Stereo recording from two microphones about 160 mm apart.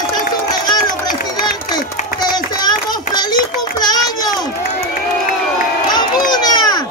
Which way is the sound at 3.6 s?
25° left (ahead or behind).